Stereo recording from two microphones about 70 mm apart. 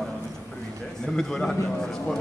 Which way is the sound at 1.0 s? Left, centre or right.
Centre.